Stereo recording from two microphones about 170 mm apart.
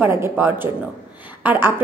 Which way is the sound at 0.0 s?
15° right (ahead or behind).